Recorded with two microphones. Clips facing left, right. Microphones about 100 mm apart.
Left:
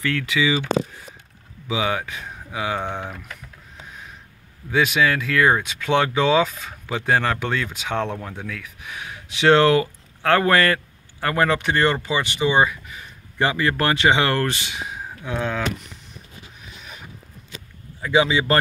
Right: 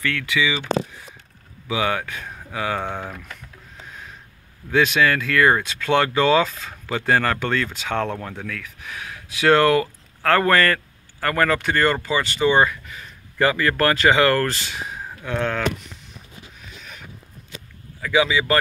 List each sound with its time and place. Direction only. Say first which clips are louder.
0.0 s a man's voice: left 1 dB; 30° left (ahead or behind)
1.7 s speech: right 1 dB; 20° left (ahead or behind)
4.6 s speech: right 1 dB; 10° left (ahead or behind)
16.8 s a sound: left 1 dB; 5° left (ahead or behind)
18.0 s a man's voice: left 1 dB; 30° left (ahead or behind)